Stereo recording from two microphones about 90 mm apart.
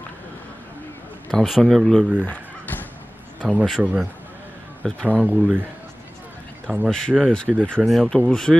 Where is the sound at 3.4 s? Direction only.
Centre (ahead or behind).